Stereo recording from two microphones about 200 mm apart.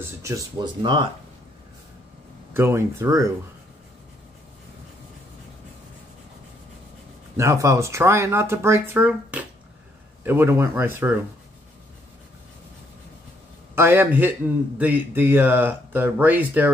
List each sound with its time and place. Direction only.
0.2 s speech: 20° right (ahead or behind)
2.5 s a man's voice: 10° right (ahead or behind)
7.3 s a man's voice: 15° right (ahead or behind)
13.7 s a man's voice: 10° right (ahead or behind)